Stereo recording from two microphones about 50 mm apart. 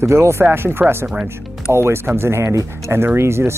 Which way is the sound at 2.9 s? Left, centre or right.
Right.